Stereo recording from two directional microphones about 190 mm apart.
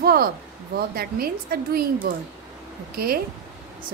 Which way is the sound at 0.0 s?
55° right (ahead or behind).